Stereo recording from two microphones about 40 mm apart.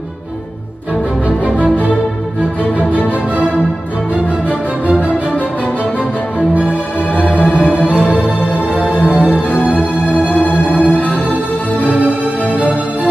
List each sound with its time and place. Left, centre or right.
7.2 s music: left
9.0 s music: right
9.3 s music: left
11.9 s music: right